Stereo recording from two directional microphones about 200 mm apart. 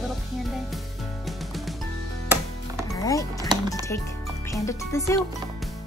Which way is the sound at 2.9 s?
15° left (ahead or behind).